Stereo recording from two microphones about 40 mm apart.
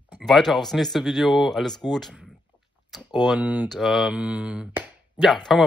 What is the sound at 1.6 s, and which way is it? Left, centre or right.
Speech, centre.